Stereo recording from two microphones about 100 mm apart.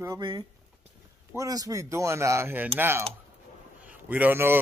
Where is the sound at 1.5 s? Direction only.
35° right (ahead or behind).